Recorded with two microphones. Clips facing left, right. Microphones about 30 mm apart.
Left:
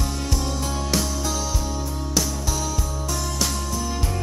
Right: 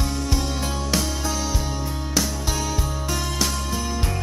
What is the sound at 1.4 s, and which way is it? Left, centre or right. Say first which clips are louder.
Music: right 1 dB; right.